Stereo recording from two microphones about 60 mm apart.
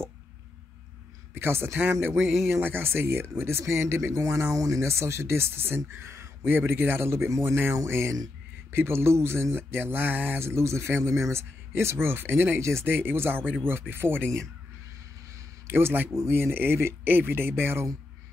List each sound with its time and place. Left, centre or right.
1.3 s speech: right
15.6 s speech: right